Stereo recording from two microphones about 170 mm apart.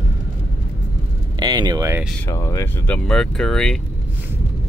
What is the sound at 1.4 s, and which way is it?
Speech, 25° right (ahead or behind).